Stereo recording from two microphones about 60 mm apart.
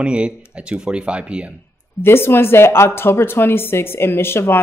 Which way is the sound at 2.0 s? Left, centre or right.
Left.